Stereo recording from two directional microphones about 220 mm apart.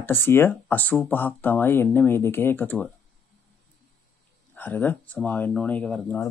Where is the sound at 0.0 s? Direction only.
10° left (ahead or behind).